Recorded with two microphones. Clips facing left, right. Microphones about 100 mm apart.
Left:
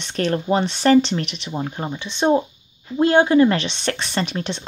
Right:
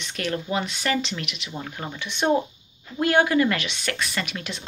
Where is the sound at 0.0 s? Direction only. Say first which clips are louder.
Left 7 dB; 35° left (ahead or behind).